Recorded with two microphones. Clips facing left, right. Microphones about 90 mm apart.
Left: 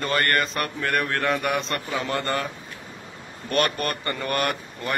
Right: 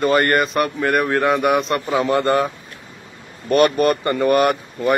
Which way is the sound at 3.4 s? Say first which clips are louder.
Right 9 dB; 15° right (ahead or behind).